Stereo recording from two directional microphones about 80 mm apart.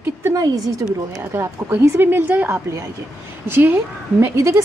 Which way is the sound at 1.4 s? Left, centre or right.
Right.